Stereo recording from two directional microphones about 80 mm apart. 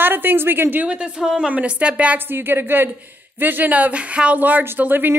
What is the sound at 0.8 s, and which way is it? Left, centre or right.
A woman's voice, centre.